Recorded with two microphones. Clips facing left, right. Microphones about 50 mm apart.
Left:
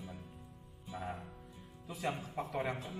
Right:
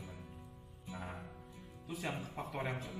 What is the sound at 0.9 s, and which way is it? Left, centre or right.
Speech, centre.